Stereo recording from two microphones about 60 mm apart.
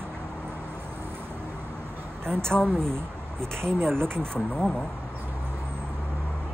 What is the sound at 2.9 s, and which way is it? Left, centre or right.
Speech, right.